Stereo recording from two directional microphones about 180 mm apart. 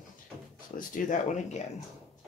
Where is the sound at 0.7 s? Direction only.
45° left (ahead or behind).